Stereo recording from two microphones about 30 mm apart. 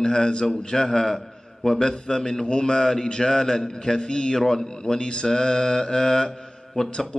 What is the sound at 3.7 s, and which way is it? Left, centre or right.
Speech, centre.